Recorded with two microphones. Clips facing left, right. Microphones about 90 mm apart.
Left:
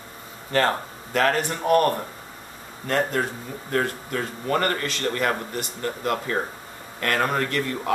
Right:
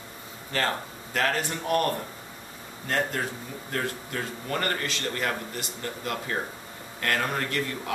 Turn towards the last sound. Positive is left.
turn(degrees=45)  # may be behind; listen again after turning